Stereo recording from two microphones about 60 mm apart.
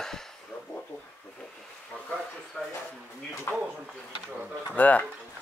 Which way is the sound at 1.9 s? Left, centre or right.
Left.